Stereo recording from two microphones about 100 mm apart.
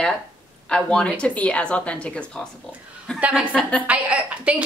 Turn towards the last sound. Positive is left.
turn(degrees=-15)  # may be behind; listen again after turning